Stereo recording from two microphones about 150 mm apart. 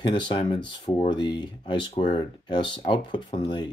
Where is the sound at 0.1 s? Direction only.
30° left (ahead or behind).